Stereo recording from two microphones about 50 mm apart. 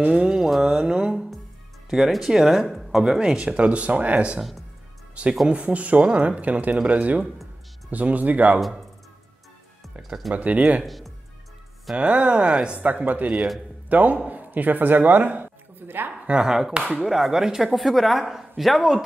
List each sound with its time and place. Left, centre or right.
0.0 s speech: right
0.4 s speech: centre
1.9 s speech: centre
3.5 s speech: right
4.4 s speech: centre
5.2 s speech: right
10.0 s speech: centre
10.3 s speech: right
10.8 s speech: centre
12.0 s speech: right
12.8 s speech: right
16.4 s speech: centre